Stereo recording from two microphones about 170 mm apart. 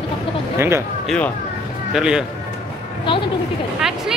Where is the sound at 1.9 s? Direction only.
5° right (ahead or behind).